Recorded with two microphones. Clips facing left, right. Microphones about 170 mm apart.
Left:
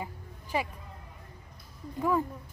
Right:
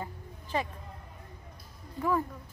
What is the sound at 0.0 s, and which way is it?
Music, 10° left (ahead or behind).